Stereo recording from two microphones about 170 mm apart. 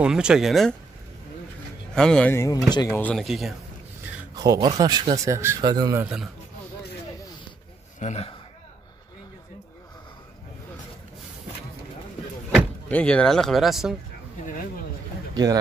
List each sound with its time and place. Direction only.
0.0 s speech: 5° right (ahead or behind)
2.0 s speech: 5° left (ahead or behind); by 2.9 s 25° left (ahead or behind)
2.9 s speech: 10° left (ahead or behind)
4.4 s speech: 25° right (ahead or behind)
5.9 s speech: 5° right (ahead or behind)
8.0 s speech: 40° left (ahead or behind)
12.5 s speech: 5° left (ahead or behind)
15.3 s speech: 20° right (ahead or behind)